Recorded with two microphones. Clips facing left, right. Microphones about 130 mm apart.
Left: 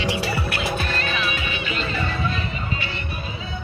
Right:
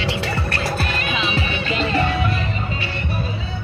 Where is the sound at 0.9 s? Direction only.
15° right (ahead or behind).